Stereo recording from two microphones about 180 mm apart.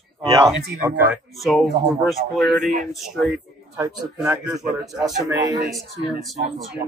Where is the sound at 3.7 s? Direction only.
15° right (ahead or behind).